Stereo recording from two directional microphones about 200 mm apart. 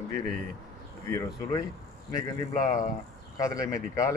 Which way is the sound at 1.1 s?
15° left (ahead or behind).